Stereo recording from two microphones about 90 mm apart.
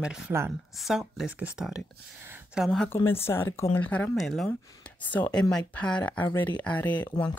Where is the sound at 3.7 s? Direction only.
20° left (ahead or behind).